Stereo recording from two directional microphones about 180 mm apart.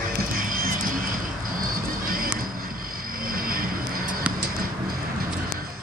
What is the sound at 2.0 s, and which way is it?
Music, 50° right (ahead or behind).